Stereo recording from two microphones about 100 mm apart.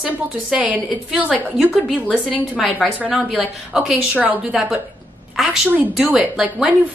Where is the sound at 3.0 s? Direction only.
15° right (ahead or behind).